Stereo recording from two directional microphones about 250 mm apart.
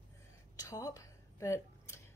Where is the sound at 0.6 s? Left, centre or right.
Centre.